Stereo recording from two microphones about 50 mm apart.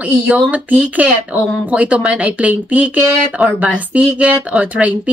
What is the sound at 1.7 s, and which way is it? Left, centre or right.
Speech, right.